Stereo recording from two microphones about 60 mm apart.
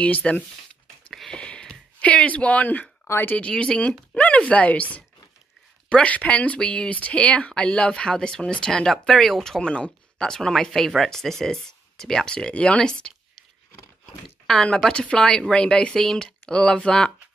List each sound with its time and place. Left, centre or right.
0.0 s speech: left
1.3 s a sound: centre
3.1 s speech: left
3.3 s speech: centre
9.6 s speech: centre
14.5 s speech: centre